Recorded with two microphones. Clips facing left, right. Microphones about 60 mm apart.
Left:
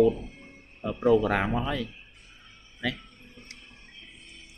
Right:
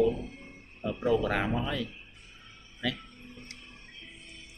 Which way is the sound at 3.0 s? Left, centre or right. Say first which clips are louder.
Right 2 dB; centre.